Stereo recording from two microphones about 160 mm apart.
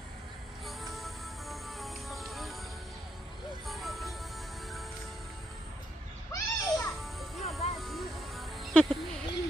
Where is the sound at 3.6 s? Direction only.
Centre (ahead or behind).